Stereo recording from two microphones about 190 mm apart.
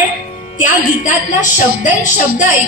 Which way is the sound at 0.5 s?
40° left (ahead or behind).